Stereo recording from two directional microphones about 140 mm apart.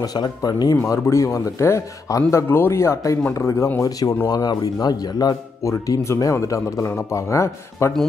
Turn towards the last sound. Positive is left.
turn(degrees=20)  # may be behind; listen again after turning